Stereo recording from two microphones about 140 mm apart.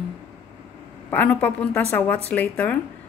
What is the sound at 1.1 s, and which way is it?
A woman's voice, 10° left (ahead or behind).